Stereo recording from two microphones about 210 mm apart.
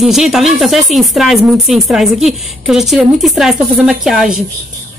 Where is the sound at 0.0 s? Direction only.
Centre (ahead or behind).